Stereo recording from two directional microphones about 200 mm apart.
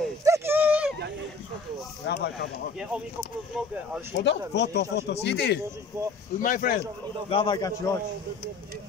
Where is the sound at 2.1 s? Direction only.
60° left (ahead or behind).